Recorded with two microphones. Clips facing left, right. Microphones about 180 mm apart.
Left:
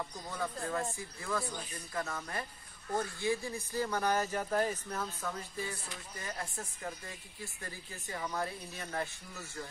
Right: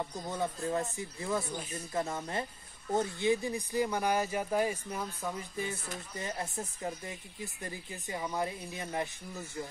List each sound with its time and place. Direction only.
0.0 s speech: 25° right (ahead or behind)